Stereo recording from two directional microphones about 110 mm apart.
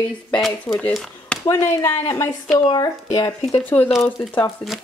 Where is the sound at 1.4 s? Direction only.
35° left (ahead or behind).